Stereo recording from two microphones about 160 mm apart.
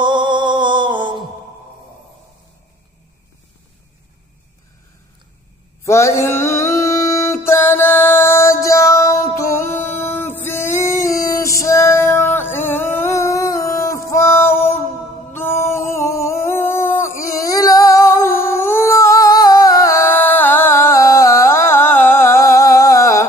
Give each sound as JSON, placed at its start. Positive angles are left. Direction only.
{"t": 0.0, "sound": "music", "side_deg": -30}
{"t": 5.9, "sound": "music", "side_deg": 20}
{"t": 15.3, "sound": "a sound", "side_deg": 15}